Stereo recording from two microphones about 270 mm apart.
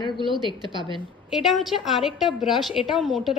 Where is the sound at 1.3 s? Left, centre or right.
Centre.